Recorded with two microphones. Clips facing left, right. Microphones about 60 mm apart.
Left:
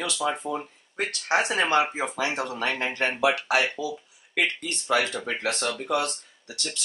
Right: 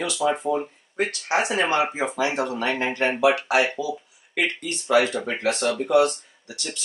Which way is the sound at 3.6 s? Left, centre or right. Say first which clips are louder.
Right 3 dB; centre.